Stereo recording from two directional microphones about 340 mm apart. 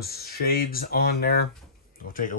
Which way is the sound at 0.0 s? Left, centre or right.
Left.